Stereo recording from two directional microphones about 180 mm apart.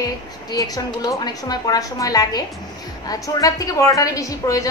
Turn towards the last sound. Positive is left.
turn(degrees=20)  # may be behind; listen again after turning